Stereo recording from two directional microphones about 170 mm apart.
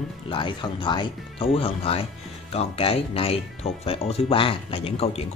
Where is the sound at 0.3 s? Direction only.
30° left (ahead or behind).